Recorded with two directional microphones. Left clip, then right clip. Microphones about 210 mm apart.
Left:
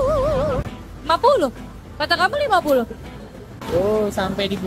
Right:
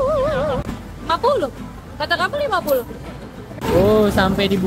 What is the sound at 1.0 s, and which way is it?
Speech, 15° left (ahead or behind).